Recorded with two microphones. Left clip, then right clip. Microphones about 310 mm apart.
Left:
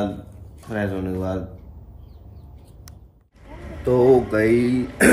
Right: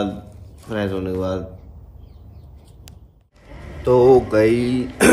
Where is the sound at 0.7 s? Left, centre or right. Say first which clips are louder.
Right 3 dB; centre.